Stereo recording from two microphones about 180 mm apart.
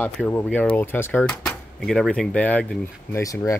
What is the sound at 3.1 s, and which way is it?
Speech, 20° left (ahead or behind).